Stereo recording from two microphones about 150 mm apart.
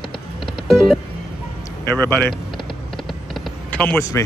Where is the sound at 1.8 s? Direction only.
15° left (ahead or behind).